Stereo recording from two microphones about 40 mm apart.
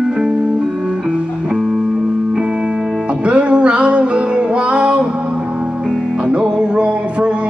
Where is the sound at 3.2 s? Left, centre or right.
Right.